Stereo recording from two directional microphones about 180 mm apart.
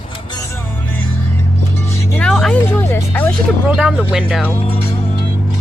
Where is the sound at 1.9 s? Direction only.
5° left (ahead or behind).